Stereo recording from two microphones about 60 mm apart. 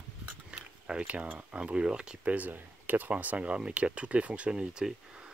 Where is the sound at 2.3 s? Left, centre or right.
Right.